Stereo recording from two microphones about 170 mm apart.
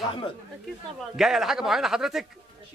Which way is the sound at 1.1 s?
Centre (ahead or behind).